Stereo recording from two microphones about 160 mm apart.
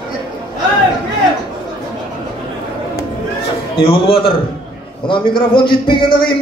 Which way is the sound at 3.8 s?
35° left (ahead or behind).